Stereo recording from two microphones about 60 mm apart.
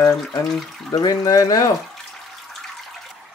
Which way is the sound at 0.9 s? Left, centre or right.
Left.